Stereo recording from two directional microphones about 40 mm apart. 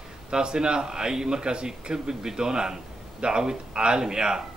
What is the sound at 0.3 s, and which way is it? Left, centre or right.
A man's voice, centre.